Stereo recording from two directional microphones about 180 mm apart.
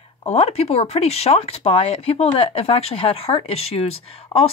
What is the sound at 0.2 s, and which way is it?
Speech, 35° left (ahead or behind).